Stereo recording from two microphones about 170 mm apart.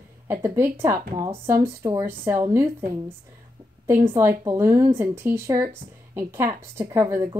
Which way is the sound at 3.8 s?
15° right (ahead or behind).